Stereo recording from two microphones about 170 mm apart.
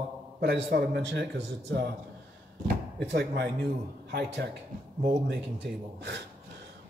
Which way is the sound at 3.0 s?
70° right (ahead or behind).